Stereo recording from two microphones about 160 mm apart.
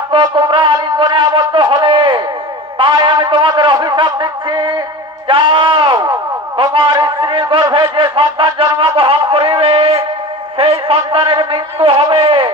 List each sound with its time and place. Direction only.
0.1 s shofar: 30° right (ahead or behind)
2.8 s a sound: 30° right (ahead or behind)
5.3 s speech: 30° right (ahead or behind)